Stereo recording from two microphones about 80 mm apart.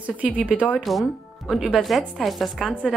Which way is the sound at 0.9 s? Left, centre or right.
Centre.